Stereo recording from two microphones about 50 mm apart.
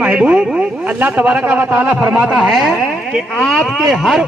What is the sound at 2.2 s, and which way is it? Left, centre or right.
Speech, right.